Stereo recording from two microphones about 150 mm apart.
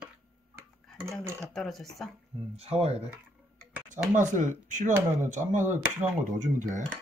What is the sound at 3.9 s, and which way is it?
Speech, 55° right (ahead or behind).